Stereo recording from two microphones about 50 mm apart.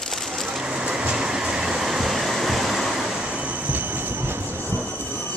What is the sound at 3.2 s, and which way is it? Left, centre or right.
Train, right.